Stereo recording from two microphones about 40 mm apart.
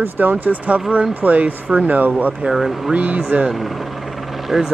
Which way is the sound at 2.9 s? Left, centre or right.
Right.